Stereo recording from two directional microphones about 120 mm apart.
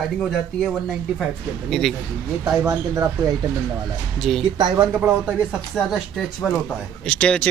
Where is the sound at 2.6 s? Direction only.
30° right (ahead or behind).